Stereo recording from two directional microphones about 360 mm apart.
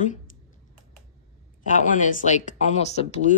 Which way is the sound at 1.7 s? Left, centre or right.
Left.